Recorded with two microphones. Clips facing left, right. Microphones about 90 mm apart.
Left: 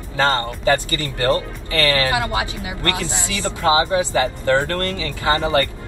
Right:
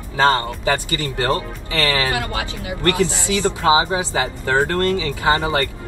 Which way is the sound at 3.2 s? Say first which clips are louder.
Even; 20° right (ahead or behind).